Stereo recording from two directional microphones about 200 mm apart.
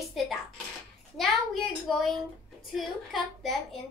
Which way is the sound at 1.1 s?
Centre (ahead or behind).